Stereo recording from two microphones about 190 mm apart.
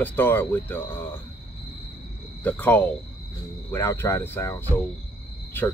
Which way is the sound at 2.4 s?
10° left (ahead or behind).